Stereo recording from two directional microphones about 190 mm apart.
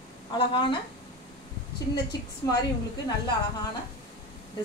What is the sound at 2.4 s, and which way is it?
Speech, 15° left (ahead or behind).